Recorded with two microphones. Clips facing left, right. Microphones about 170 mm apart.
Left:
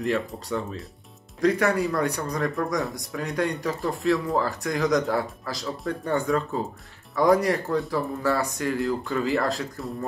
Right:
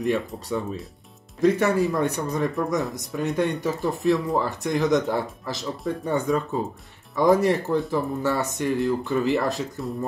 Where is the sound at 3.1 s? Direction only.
25° right (ahead or behind).